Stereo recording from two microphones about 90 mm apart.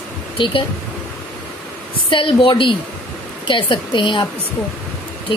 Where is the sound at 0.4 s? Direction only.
65° left (ahead or behind).